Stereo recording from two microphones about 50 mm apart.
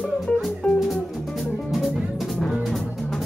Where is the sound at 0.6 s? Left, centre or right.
Left.